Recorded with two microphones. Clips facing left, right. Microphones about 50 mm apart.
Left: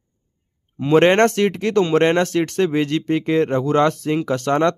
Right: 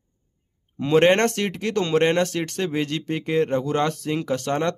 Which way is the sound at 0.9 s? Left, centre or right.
Left.